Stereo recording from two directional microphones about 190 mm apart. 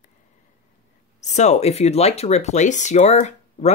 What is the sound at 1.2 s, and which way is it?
Speech, 35° left (ahead or behind).